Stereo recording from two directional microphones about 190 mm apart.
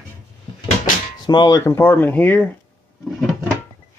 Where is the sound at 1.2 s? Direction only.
25° left (ahead or behind).